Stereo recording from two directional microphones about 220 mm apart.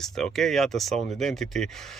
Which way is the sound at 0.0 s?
Centre (ahead or behind).